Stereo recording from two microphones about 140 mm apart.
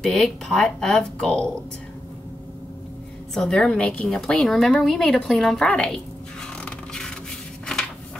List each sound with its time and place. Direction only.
0.0 s a woman's voice: 5° left (ahead or behind)
3.3 s a woman's voice: 5° left (ahead or behind)
6.6 s a sound: 5° left (ahead or behind)